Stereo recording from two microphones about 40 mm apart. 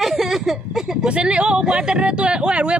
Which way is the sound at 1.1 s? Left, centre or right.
Right.